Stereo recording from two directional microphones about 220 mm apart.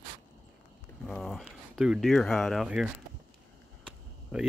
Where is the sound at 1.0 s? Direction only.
Centre (ahead or behind).